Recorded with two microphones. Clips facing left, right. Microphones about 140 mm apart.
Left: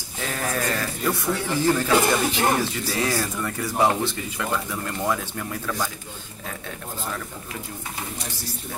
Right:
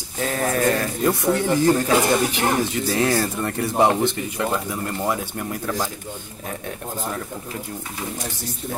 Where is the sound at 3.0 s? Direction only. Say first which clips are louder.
Right 4 dB; 50° right (ahead or behind).